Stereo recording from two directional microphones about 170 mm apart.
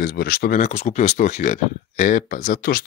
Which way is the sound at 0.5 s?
45° left (ahead or behind).